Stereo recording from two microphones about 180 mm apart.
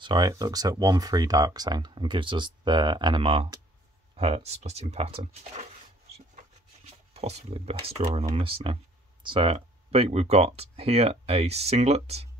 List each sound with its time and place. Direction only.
0.0 s speech: 25° right (ahead or behind)
4.2 s speech: 35° right (ahead or behind)
7.2 s speech: 35° right (ahead or behind)